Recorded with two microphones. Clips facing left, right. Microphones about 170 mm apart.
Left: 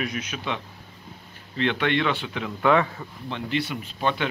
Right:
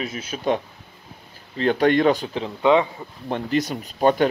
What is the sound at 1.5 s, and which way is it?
Speech, 40° right (ahead or behind).